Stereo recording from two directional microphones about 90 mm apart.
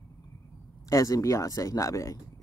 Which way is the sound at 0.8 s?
40° left (ahead or behind).